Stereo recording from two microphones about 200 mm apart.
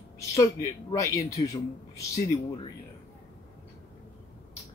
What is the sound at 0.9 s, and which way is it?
Speech, 15° left (ahead or behind).